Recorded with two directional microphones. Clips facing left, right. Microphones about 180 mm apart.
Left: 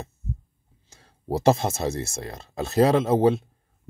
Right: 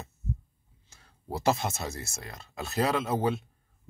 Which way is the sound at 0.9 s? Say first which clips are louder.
Left 9 dB; 30° left (ahead or behind).